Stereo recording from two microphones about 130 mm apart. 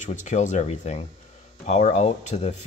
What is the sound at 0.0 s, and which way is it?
Speech, 70° left (ahead or behind).